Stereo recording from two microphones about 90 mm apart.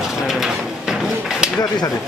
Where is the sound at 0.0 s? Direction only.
5° right (ahead or behind).